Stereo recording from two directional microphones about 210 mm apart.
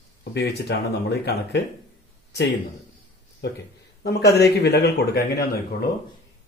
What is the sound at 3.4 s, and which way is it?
Speech, 55° left (ahead or behind).